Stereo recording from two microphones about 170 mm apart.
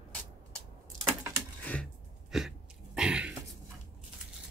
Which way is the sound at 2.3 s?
Centre (ahead or behind).